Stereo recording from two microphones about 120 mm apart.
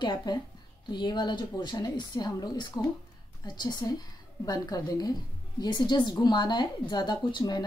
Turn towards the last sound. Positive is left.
turn(degrees=35)  # may be behind; listen again after turning